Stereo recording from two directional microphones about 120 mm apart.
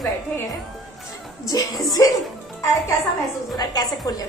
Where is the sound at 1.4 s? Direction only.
30° left (ahead or behind).